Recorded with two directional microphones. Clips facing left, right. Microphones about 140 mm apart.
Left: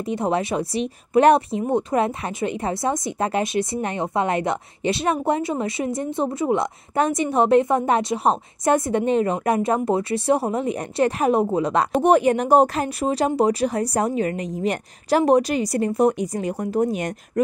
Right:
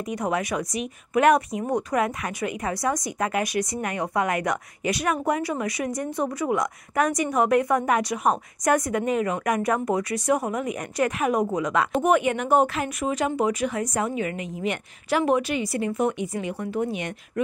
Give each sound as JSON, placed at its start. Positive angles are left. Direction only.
{"t": 0.0, "sound": "speech", "side_deg": 30}